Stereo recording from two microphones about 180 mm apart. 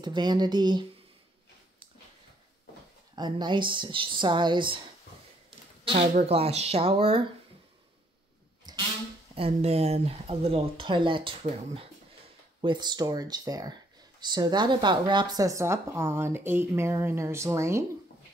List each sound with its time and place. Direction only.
0.0 s speech: 25° right (ahead or behind)
3.2 s speech: 25° right (ahead or behind)
5.9 s speech: 35° right (ahead or behind)
8.7 s a sound: 25° right (ahead or behind)
9.3 s speech: 35° right (ahead or behind); by 17.8 s 15° right (ahead or behind)